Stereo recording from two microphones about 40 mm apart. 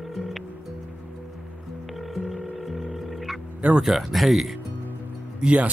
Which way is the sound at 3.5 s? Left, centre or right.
Right.